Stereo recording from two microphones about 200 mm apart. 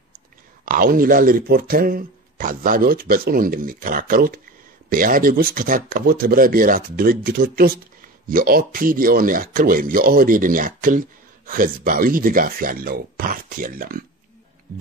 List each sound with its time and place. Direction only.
0.7 s speech: 45° right (ahead or behind)